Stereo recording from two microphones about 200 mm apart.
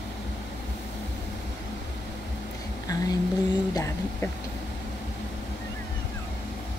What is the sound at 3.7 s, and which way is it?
Speech, 15° left (ahead or behind).